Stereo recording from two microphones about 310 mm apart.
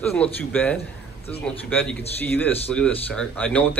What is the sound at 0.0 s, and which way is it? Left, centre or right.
Speech, centre.